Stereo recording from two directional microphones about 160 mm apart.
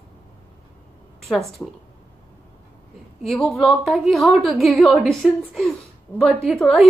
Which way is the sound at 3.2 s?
Centre (ahead or behind).